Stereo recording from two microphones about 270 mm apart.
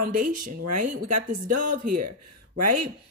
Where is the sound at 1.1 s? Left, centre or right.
Right.